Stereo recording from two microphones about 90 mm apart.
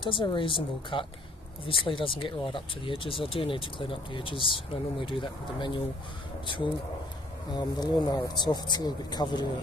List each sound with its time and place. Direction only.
0.0 s speech: 65° left (ahead or behind)
7.5 s speech: 50° left (ahead or behind)